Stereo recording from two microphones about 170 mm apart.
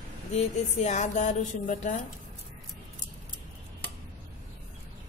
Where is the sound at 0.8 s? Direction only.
45° left (ahead or behind).